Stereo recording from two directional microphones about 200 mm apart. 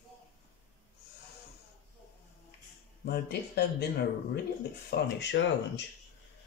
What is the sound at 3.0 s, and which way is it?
Speech, 50° left (ahead or behind).